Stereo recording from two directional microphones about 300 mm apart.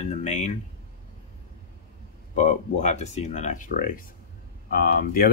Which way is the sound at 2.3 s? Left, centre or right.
Left.